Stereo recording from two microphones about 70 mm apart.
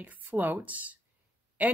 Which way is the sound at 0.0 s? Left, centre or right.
Right.